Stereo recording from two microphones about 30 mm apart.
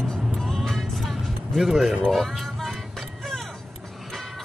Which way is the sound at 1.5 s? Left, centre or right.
Centre.